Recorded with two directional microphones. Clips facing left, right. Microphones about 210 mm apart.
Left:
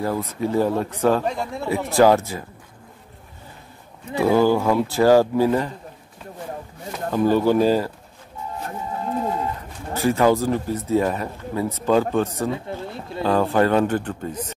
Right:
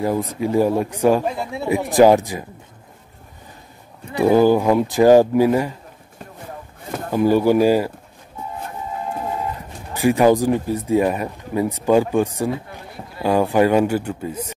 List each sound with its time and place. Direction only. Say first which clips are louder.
0.0 s speech: right 3 dB; 15° right (ahead or behind)
4.1 s speech: right 3 dB; 15° right (ahead or behind)
7.1 s speech: right 2 dB; 10° right (ahead or behind)
9.9 s speech: right 3 dB; 15° right (ahead or behind)
12.7 s a sound: left 8 dB; 25° left (ahead or behind)
13.2 s speech: right 2 dB; 10° right (ahead or behind)